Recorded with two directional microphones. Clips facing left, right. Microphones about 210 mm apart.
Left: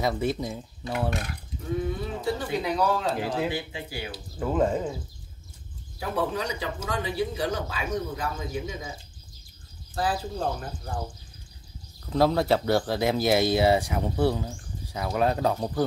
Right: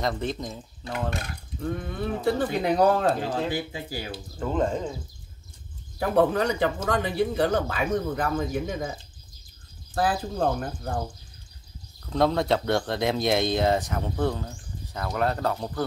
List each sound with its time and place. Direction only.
0.0 s speech: 10° left (ahead or behind)
2.0 s speech: 55° right (ahead or behind)
3.2 s speech: 10° left (ahead or behind)
3.7 s speech: 40° right (ahead or behind)
4.4 s speech: 5° left (ahead or behind)
5.9 s speech: 55° right (ahead or behind)
9.9 s speech: 55° right (ahead or behind)
12.1 s speech: 5° left (ahead or behind)